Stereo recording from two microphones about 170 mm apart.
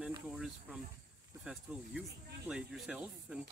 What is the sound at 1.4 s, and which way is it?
Speech, 5° right (ahead or behind).